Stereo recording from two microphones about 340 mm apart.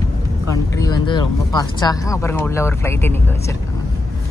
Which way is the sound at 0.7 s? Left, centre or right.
Centre.